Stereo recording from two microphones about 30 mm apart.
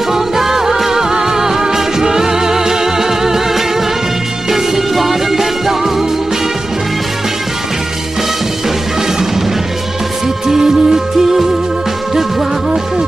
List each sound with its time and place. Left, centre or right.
0.1 s music: centre
4.9 s music: centre
10.4 s music: centre